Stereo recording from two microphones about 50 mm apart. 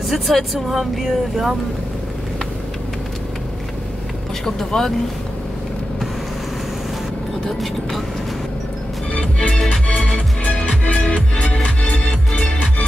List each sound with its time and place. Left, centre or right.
0.1 s speech: centre
4.5 s speech: centre
9.1 s organ: left
9.9 s music: centre
10.4 s music: left